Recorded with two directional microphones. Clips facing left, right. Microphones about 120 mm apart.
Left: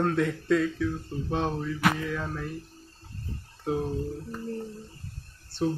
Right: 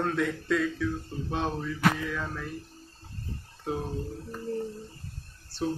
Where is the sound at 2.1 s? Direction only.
20° left (ahead or behind).